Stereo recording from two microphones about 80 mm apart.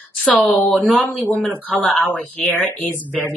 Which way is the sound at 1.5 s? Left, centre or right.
Centre.